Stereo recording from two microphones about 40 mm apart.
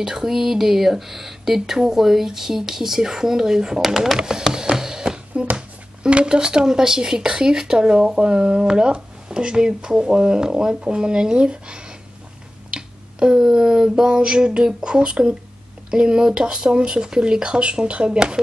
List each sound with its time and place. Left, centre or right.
0.0 s speech: centre
4.2 s a sound: centre
6.0 s speech: right